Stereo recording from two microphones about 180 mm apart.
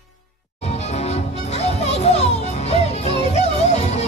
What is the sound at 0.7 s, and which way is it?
Music, 35° left (ahead or behind).